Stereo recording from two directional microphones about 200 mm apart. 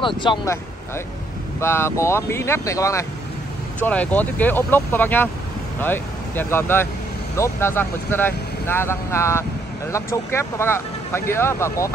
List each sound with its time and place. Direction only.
0.0 s speech: 25° left (ahead or behind)
1.6 s speech: 10° left (ahead or behind)